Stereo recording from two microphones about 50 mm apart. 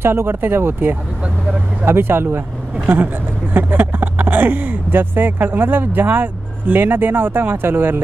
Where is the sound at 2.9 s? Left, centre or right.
Right.